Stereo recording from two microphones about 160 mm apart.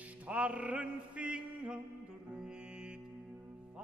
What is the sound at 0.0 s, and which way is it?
Music, 10° right (ahead or behind).